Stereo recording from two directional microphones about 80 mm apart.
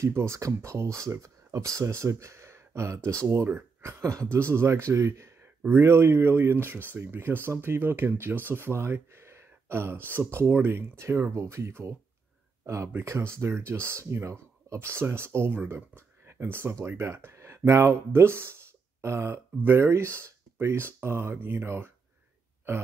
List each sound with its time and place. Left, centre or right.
0.0 s speech: right